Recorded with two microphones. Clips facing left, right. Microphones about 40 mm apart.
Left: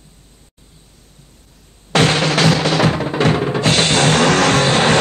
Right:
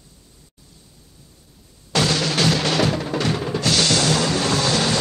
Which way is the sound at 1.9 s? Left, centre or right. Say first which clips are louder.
Left 6 dB; left.